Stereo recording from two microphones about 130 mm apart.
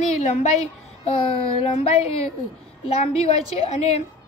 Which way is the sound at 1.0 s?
55° left (ahead or behind).